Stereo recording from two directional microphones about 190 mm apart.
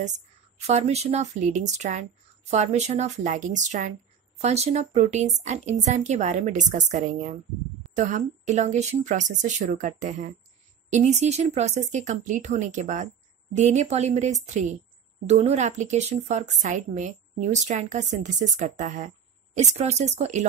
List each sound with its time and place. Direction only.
0.6 s a woman's voice: 35° right (ahead or behind)